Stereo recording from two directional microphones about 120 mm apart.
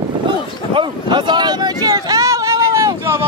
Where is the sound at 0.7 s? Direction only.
45° right (ahead or behind).